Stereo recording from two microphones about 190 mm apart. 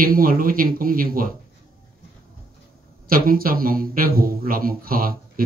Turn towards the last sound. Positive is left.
turn(degrees=-50)  # may be behind; listen again after turning